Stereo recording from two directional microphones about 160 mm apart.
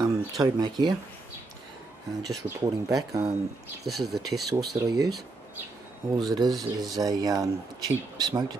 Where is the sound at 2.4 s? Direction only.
20° right (ahead or behind).